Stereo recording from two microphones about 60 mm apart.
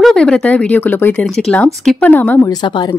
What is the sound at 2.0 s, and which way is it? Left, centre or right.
Speech, left.